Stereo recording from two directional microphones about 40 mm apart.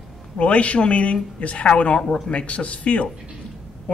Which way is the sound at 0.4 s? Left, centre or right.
Left.